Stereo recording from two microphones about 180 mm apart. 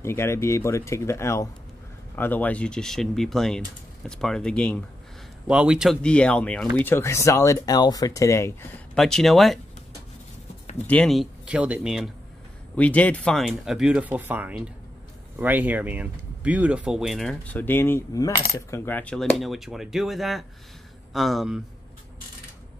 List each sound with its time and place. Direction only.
0.0 s speech: 15° left (ahead or behind)
5.5 s speech: 5° right (ahead or behind); by 8.7 s 15° left (ahead or behind)
8.9 s speech: centre (ahead or behind)
10.9 s speech: 5° left (ahead or behind)
12.7 s speech: 10° left (ahead or behind)